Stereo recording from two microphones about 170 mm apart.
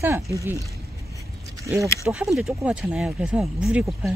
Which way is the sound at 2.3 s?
5° right (ahead or behind).